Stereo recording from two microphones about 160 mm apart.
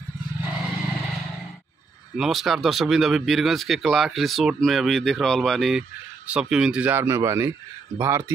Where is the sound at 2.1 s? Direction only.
Centre (ahead or behind).